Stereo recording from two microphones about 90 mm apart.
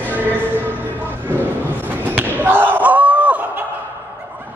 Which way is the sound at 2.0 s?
20° right (ahead or behind).